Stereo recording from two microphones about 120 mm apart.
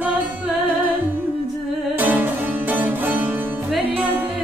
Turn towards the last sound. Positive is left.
turn(degrees=-15)  # may be behind; listen again after turning